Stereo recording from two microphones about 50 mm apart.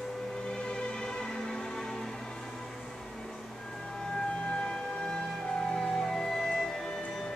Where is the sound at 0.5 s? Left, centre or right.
Centre.